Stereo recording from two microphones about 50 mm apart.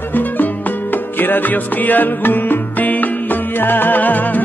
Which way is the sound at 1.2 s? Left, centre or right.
Left.